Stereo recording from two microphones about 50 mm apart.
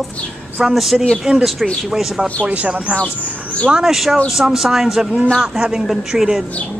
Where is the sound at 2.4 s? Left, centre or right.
Right.